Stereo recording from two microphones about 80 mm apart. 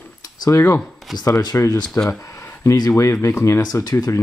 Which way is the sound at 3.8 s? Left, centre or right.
Left.